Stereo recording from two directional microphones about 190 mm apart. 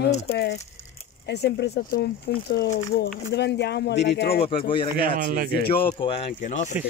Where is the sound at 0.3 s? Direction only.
55° left (ahead or behind).